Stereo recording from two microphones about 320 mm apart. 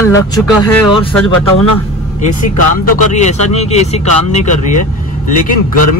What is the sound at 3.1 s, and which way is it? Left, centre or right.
Speech, left.